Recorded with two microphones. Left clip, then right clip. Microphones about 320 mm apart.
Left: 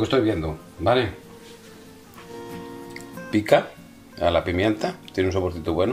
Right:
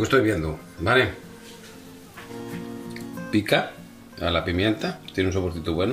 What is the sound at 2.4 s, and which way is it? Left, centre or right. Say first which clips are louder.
Music: even; centre.